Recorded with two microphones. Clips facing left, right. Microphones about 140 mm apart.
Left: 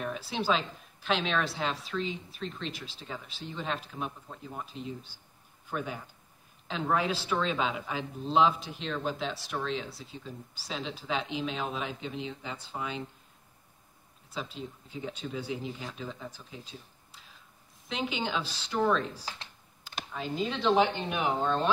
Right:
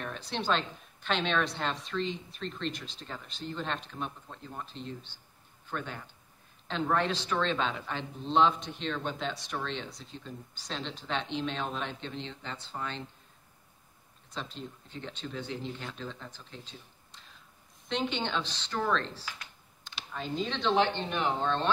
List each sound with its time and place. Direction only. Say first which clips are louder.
0.0 s speech: left 3 dB; 5° left (ahead or behind)
14.3 s speech: left 2 dB; 5° left (ahead or behind)
19.2 s speech: left 2 dB; 30° left (ahead or behind)
20.1 s speech: left 1 dB; centre (ahead or behind)